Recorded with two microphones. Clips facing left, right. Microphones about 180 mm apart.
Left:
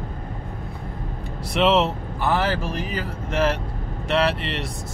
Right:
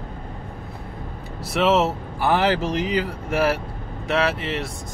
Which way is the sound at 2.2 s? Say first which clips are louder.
Right 3 dB; 15° right (ahead or behind).